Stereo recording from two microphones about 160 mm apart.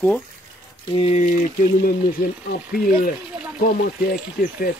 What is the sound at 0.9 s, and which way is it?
Speech, 40° left (ahead or behind).